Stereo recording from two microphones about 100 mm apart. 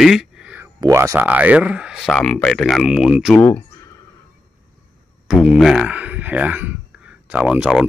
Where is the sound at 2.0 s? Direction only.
5° left (ahead or behind).